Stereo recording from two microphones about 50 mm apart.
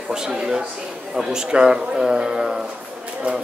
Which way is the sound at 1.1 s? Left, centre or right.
Centre.